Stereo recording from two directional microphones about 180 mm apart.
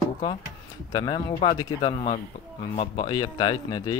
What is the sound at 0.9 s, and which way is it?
Speech, 25° left (ahead or behind).